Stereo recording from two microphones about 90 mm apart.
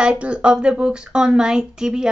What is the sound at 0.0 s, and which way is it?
Speech, 15° right (ahead or behind).